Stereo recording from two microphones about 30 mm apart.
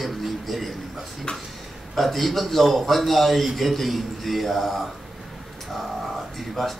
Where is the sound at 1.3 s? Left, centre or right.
Left.